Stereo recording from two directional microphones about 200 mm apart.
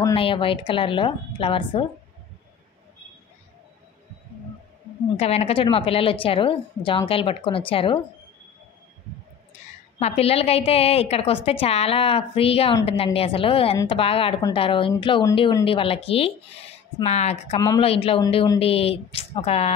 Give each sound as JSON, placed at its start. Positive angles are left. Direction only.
{"t": 0.0, "sound": "a woman's voice", "side_deg": 25}
{"t": 5.1, "sound": "a woman's voice", "side_deg": 30}
{"t": 9.9, "sound": "a woman's voice", "side_deg": 30}
{"t": 17.6, "sound": "a woman's voice", "side_deg": 25}